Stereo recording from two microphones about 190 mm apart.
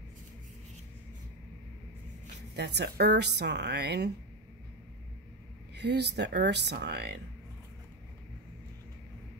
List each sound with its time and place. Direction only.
2.5 s speech: 60° right (ahead or behind)
5.8 s speech: 60° right (ahead or behind)